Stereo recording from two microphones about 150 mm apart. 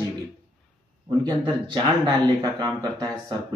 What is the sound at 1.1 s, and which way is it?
A man's voice, 30° right (ahead or behind).